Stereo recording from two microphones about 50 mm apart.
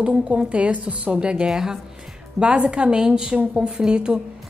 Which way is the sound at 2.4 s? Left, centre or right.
Right.